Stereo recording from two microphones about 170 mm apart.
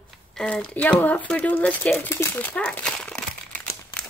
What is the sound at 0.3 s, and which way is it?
Speech, 5° left (ahead or behind).